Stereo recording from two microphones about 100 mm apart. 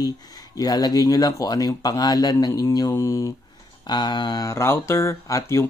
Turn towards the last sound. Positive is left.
turn(degrees=30)  # may be behind; listen again after turning